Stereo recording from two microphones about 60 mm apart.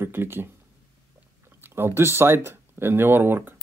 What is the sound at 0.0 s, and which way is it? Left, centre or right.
Speech, right.